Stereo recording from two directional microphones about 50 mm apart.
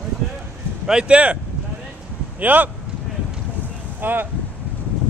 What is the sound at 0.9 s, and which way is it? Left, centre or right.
Speech, right.